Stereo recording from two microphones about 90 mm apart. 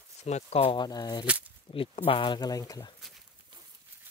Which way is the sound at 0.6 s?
80° left.